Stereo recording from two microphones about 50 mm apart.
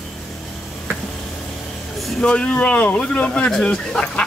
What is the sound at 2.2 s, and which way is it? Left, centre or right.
Speech, left.